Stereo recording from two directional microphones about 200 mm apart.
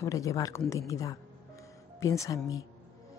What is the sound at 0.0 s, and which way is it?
A woman's voice, 15° left (ahead or behind).